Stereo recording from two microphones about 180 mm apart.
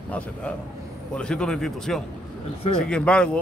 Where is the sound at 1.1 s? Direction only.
5° left (ahead or behind).